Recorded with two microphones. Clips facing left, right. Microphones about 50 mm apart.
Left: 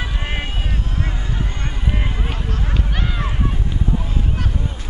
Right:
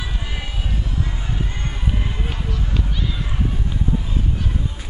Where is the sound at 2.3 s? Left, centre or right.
Left.